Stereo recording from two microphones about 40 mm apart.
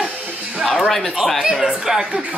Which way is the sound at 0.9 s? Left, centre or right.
Centre.